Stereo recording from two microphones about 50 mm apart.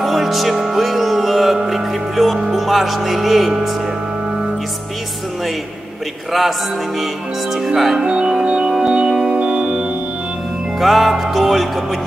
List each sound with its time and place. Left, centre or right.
0.0 s music: centre
2.4 s speech: centre
7.5 s music: centre
8.0 s organ: centre
9.4 s music: centre
10.8 s music: centre